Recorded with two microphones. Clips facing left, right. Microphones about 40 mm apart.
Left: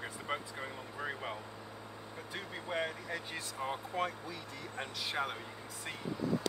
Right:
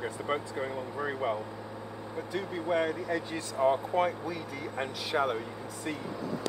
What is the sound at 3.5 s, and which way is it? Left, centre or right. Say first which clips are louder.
Speech: right 11 dB; centre.